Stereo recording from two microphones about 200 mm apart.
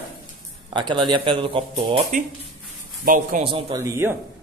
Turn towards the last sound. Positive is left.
turn(degrees=-15)  # may be behind; listen again after turning